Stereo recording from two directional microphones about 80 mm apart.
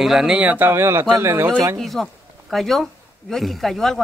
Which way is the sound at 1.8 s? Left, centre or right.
Centre.